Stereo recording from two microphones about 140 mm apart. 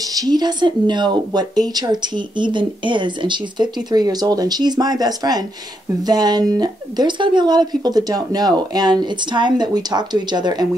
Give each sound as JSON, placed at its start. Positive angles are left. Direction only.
{"t": 0.0, "sound": "speech", "side_deg": -30}